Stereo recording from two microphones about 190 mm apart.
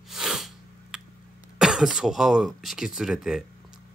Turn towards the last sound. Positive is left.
turn(degrees=-5)  # may be behind; listen again after turning